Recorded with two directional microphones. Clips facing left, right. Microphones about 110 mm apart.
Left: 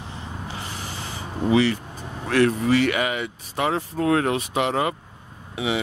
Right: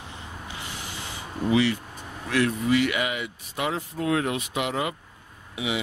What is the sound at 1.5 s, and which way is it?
Speech, 35° left (ahead or behind).